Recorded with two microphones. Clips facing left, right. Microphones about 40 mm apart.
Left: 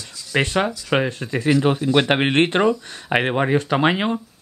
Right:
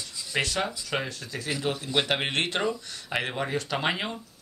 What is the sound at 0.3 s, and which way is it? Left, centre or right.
Speech, left.